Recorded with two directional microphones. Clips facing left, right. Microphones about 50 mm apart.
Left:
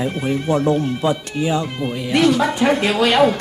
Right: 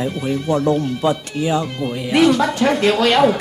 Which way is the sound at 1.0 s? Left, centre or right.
Centre.